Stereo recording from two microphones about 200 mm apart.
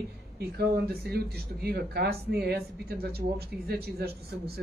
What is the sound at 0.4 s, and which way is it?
Speech, 50° right (ahead or behind).